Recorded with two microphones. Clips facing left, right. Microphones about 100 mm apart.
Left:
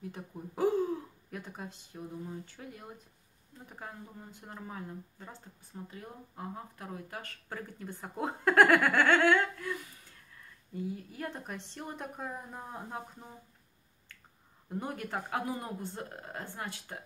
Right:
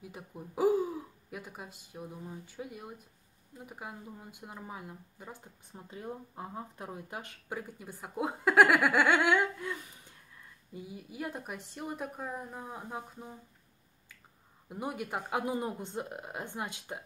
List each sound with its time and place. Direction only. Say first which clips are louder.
0.0 s a woman's voice: left 3 dB; 5° right (ahead or behind)
14.7 s speech: even; 10° right (ahead or behind)